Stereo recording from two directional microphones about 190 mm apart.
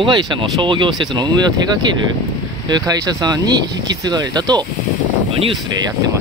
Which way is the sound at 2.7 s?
20° right (ahead or behind).